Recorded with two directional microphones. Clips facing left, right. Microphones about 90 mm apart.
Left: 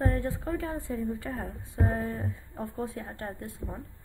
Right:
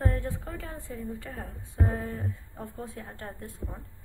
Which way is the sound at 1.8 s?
40° left (ahead or behind).